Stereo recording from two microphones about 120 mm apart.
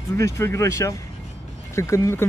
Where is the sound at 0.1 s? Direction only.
20° left (ahead or behind).